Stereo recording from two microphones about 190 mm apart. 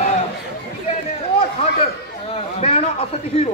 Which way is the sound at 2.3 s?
35° left (ahead or behind).